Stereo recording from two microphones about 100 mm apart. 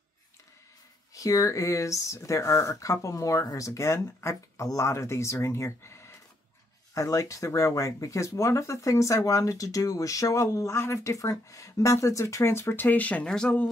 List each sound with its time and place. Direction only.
1.1 s speech: 35° left (ahead or behind); by 13.7 s 10° left (ahead or behind)